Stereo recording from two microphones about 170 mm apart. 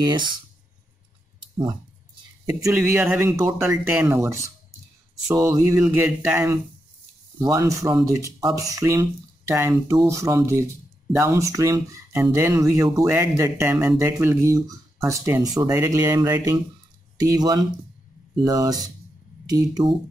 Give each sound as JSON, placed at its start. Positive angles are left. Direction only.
{"t": 0.0, "sound": "speech", "side_deg": -25}
{"t": 2.4, "sound": "speech", "side_deg": -15}